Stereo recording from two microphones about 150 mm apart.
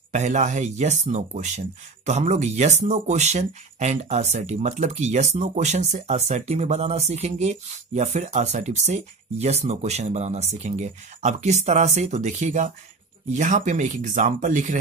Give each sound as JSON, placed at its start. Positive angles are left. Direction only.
{"t": 0.1, "sound": "speech", "side_deg": -55}